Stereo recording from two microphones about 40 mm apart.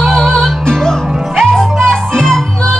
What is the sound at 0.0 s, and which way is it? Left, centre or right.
Music, centre.